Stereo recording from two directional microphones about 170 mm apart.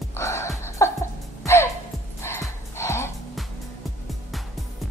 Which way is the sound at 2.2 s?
15° left (ahead or behind).